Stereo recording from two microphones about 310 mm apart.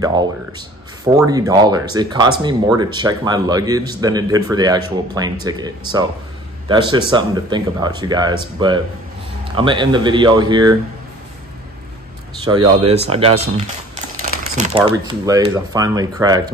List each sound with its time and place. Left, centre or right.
0.0 s speech: centre
12.5 s speech: centre
14.9 s speech: centre